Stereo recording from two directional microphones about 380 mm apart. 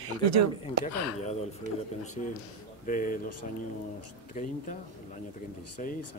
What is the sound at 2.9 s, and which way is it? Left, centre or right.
Speech, left.